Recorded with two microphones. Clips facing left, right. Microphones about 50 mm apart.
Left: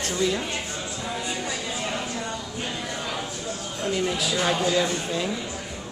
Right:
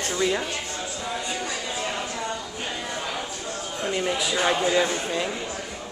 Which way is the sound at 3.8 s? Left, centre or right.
Centre.